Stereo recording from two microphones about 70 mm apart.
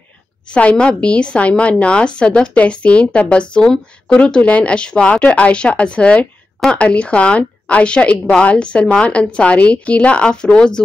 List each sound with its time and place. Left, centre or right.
0.5 s speech: centre
4.2 s speech: centre